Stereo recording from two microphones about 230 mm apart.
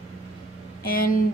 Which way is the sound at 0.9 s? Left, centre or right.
Left.